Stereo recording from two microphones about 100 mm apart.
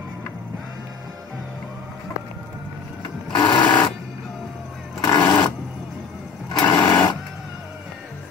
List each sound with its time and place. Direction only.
3.3 s sewing machine: 50° left (ahead or behind)
5.0 s a sound: 40° left (ahead or behind)
6.5 s sewing machine: 45° left (ahead or behind)